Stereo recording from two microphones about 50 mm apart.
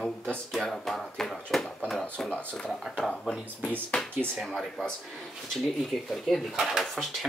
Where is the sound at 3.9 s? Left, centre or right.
Left.